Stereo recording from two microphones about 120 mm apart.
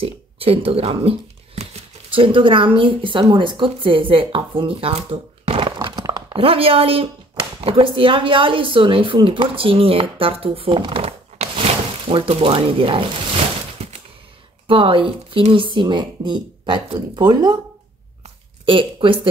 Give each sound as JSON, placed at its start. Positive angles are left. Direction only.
{"t": 0.0, "sound": "speech", "side_deg": -50}
{"t": 6.0, "sound": "a sound", "side_deg": -30}
{"t": 6.3, "sound": "speech", "side_deg": -50}
{"t": 11.5, "sound": "speech", "side_deg": -45}
{"t": 13.7, "sound": "a sound", "side_deg": -65}
{"t": 14.7, "sound": "speech", "side_deg": -50}
{"t": 18.7, "sound": "speech", "side_deg": -45}